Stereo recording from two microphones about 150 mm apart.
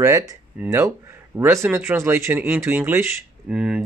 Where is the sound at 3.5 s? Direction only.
5° right (ahead or behind).